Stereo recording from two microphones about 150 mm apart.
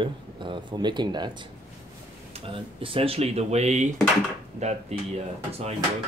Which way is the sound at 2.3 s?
40° right (ahead or behind).